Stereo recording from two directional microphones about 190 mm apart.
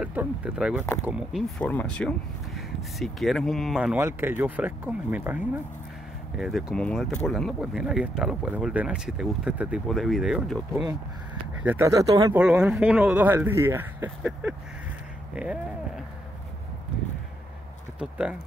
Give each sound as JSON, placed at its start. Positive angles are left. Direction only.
{"t": 0.0, "sound": "speech", "side_deg": -10}
{"t": 1.6, "sound": "speech", "side_deg": 5}
{"t": 11.6, "sound": "speech", "side_deg": -10}
{"t": 12.4, "sound": "speech", "side_deg": -5}
{"t": 17.9, "sound": "speech", "side_deg": -5}